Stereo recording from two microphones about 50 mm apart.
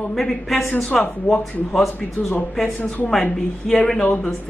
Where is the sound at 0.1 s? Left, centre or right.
Centre.